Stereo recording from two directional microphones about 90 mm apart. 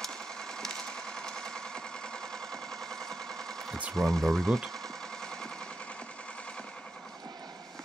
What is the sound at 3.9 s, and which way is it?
Speech, centre (ahead or behind).